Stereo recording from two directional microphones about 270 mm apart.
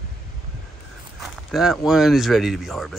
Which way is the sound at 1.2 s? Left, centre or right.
Centre.